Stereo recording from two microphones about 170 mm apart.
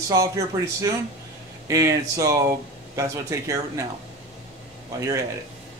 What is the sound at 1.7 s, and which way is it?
A man's voice, 20° right (ahead or behind).